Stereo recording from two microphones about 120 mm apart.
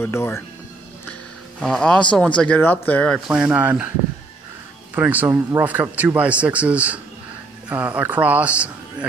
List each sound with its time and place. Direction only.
0.0 s speech: 20° left (ahead or behind)
1.6 s speech: 5° left (ahead or behind)
3.3 s a man's voice: 10° right (ahead or behind)
4.9 s a man's voice: 15° right (ahead or behind)